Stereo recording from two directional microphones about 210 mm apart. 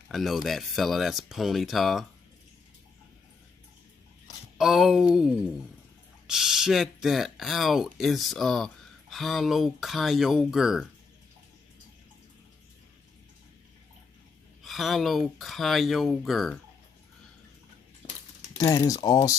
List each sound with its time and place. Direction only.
0.1 s speech: centre (ahead or behind)
4.6 s speech: centre (ahead or behind)
14.6 s speech: centre (ahead or behind)
18.6 s speech: 15° left (ahead or behind)